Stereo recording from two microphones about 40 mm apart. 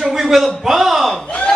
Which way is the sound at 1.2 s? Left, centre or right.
Left.